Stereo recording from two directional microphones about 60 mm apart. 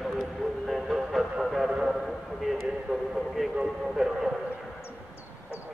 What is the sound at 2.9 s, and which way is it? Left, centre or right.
A man's voice, centre.